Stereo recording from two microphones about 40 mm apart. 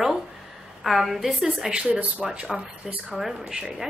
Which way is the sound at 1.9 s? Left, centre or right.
Right.